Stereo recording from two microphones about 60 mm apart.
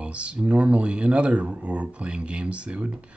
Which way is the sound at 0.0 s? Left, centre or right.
Centre.